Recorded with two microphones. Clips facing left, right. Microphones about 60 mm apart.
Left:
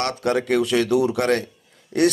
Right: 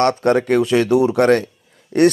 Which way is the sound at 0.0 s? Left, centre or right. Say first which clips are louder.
Right 7 dB; right.